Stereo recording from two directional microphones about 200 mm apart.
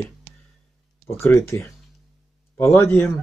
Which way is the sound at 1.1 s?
10° left (ahead or behind).